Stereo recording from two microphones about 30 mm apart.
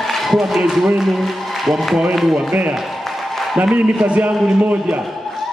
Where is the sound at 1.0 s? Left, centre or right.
Centre.